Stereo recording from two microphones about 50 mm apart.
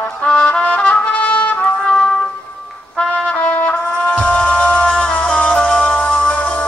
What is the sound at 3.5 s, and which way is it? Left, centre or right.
Music, left.